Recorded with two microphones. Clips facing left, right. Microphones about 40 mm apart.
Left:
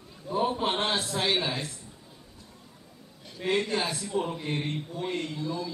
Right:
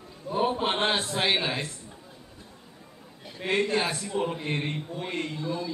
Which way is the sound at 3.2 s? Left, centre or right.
Centre.